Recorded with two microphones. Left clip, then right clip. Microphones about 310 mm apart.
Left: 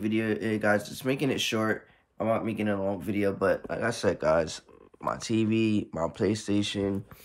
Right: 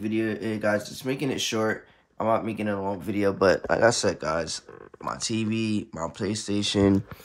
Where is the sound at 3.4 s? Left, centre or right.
Right.